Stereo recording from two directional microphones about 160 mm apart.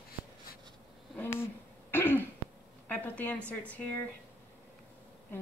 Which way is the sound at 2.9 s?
10° left (ahead or behind).